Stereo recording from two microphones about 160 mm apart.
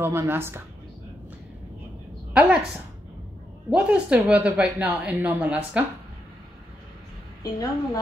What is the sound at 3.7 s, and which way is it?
A man's voice, 10° right (ahead or behind).